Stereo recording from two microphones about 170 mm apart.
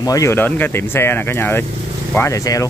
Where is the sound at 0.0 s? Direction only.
20° left (ahead or behind).